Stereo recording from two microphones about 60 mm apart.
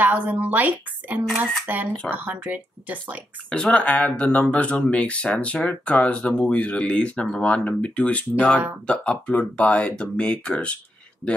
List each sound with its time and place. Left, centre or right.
0.0 s speech: right
3.4 s speech: centre